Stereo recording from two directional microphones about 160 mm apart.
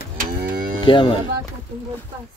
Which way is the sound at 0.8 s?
30° left (ahead or behind).